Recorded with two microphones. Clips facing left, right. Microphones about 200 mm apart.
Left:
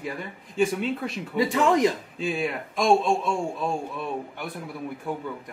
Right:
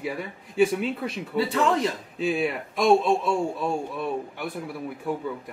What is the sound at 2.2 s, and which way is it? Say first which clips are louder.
Speech: right 3 dB; centre (ahead or behind).